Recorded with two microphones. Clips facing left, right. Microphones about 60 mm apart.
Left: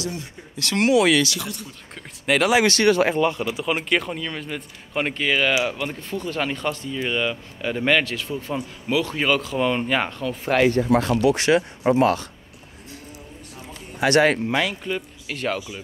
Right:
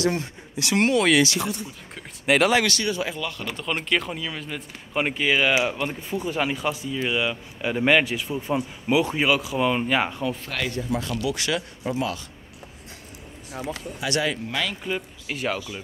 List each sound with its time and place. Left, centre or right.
0.7 s speech: centre
1.2 s speech: right
2.2 s speech: centre
2.8 s speech: left
3.2 s speech: left
3.4 s speech: centre
9.2 s speech: centre
10.5 s speech: left
10.8 s speech: left
11.8 s speech: left
13.9 s speech: left
14.8 s speech: centre